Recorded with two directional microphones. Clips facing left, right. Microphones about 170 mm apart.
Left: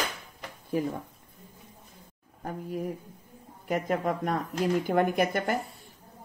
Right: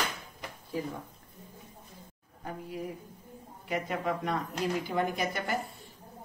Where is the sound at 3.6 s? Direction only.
45° left (ahead or behind).